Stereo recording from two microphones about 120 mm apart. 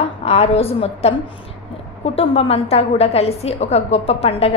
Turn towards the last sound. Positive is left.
turn(degrees=60)  # may be behind; listen again after turning